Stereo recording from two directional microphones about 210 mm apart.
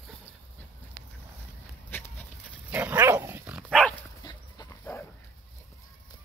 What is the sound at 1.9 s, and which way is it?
Dog, 10° left (ahead or behind).